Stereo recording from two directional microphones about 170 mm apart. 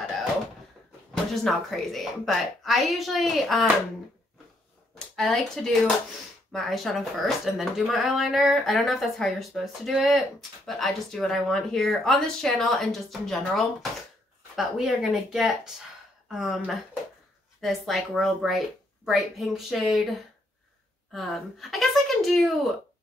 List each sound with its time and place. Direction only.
1.3 s speech: centre (ahead or behind)
4.9 s a woman's voice: 5° left (ahead or behind)